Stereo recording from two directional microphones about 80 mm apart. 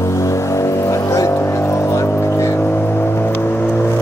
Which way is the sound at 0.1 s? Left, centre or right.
Left.